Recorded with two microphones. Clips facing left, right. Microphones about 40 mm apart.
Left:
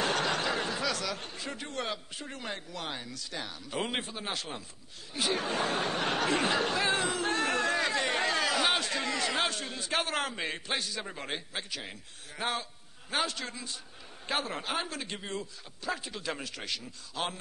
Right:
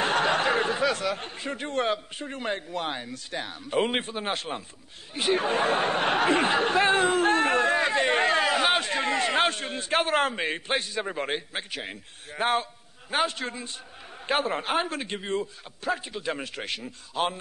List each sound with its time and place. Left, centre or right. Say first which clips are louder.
0.0 s a sound: right 6 dB; right
2.2 s speech: right 8 dB; right
16.1 s speech: right 5 dB; right